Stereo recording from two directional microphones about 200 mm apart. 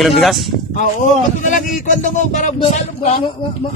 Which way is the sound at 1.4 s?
40° left (ahead or behind).